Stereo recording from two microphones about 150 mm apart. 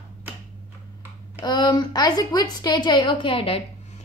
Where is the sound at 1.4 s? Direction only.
25° left (ahead or behind).